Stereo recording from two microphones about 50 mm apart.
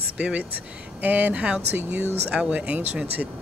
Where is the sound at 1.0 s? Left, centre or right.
Right.